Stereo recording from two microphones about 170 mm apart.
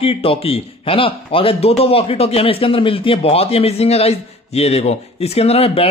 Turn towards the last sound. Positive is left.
turn(degrees=35)  # may be behind; listen again after turning